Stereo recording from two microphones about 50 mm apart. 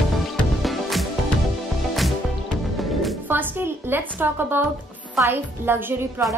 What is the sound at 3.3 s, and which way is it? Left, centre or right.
A woman's voice, right.